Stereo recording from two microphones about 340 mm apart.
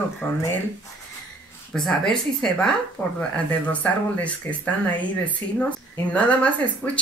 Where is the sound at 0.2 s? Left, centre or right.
Centre.